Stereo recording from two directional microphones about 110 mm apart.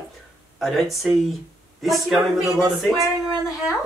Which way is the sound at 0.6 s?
Centre (ahead or behind).